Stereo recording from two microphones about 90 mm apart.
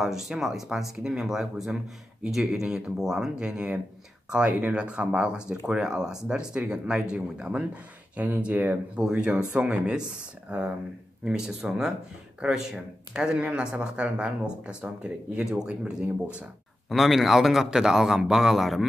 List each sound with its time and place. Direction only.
0.0 s a man's voice: 5° right (ahead or behind)